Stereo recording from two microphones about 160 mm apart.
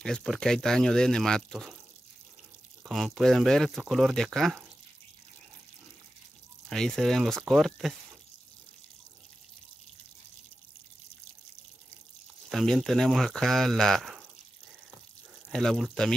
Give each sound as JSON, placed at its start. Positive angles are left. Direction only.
{"t": 0.0, "sound": "speech", "side_deg": 5}
{"t": 2.8, "sound": "speech", "side_deg": 0}
{"t": 6.7, "sound": "speech", "side_deg": 0}
{"t": 12.4, "sound": "speech", "side_deg": 0}
{"t": 15.5, "sound": "speech", "side_deg": 0}